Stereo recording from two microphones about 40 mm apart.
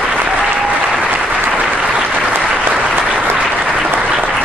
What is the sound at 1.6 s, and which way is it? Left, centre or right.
Applause, right.